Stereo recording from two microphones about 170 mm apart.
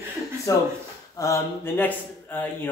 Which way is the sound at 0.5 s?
20° left (ahead or behind).